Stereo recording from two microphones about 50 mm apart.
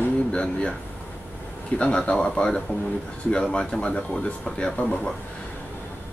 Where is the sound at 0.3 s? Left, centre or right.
Centre.